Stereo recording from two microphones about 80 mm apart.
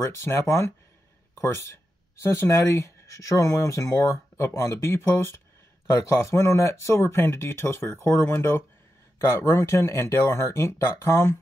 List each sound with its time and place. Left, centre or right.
0.0 s speech: left
5.9 s speech: left